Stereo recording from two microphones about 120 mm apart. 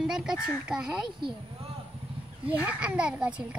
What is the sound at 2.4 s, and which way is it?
Speech, 10° right (ahead or behind).